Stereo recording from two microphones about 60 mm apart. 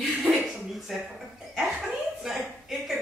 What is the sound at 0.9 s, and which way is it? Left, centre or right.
Speech, centre.